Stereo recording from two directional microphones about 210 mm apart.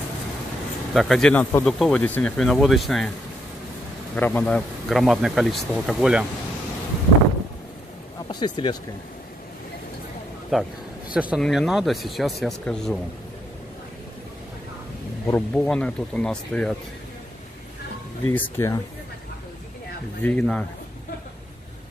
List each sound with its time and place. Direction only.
0.9 s speech: centre (ahead or behind)
4.1 s speech: 10° left (ahead or behind)
8.3 s speech: 20° left (ahead or behind)
10.5 s speech: centre (ahead or behind)
15.2 s speech: 10° left (ahead or behind)
18.3 s speech: 10° left (ahead or behind)
20.2 s speech: 5° left (ahead or behind)